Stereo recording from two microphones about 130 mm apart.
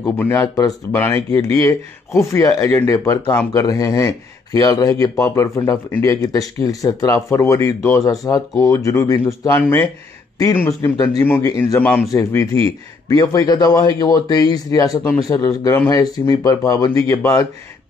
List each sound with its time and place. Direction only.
0.0 s speech: 15° left (ahead or behind)